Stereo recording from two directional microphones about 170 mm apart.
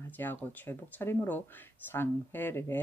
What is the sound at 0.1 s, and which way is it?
Speech, 10° left (ahead or behind).